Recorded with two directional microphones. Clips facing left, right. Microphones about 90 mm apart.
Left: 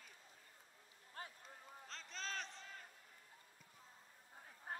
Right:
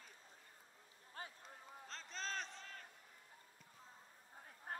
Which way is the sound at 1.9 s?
40° right (ahead or behind).